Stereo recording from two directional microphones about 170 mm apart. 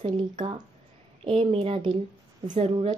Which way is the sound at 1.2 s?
35° right (ahead or behind).